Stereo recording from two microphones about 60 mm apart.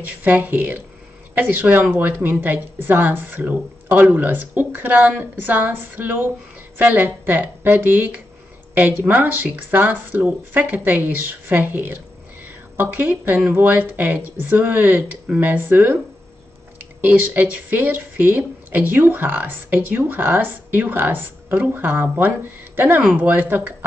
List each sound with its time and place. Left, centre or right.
0.2 s speech: right
17.0 s speech: right